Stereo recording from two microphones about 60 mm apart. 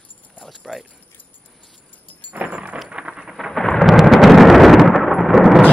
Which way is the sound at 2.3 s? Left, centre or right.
Right.